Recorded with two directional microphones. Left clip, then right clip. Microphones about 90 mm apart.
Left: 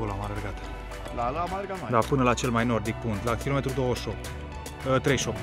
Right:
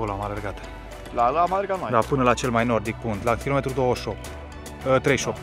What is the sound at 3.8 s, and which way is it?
Speech, 25° right (ahead or behind).